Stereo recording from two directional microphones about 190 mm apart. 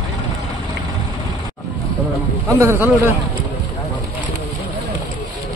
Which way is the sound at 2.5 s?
15° right (ahead or behind).